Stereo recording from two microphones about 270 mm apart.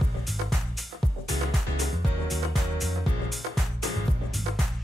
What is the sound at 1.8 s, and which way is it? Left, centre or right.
Music, centre.